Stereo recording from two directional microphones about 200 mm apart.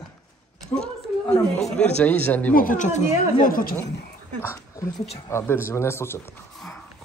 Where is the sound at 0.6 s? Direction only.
5° left (ahead or behind).